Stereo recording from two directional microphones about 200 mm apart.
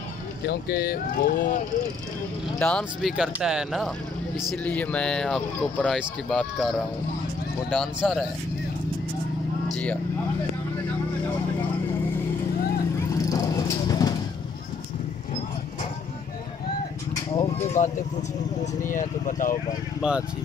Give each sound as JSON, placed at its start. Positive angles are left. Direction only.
{"t": 0.5, "sound": "speech", "side_deg": 50}
{"t": 2.6, "sound": "speech", "side_deg": 0}
{"t": 13.3, "sound": "vehicle", "side_deg": 20}
{"t": 17.8, "sound": "speech", "side_deg": 40}
{"t": 20.0, "sound": "speech", "side_deg": -5}